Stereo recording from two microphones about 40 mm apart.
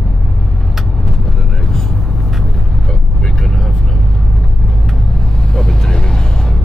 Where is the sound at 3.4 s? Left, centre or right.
Centre.